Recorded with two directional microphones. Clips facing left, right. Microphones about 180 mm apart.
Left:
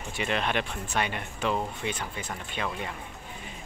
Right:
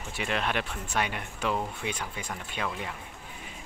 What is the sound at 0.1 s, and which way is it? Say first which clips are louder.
Speech: left 2 dB; 5° right (ahead or behind).